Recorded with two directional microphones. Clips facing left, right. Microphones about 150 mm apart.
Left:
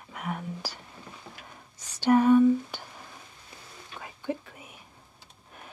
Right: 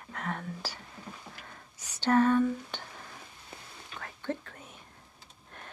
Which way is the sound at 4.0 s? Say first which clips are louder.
Left 2 dB; 10° left (ahead or behind).